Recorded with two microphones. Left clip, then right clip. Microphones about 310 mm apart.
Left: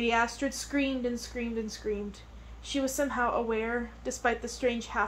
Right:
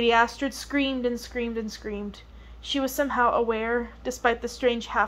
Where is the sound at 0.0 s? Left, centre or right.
Right.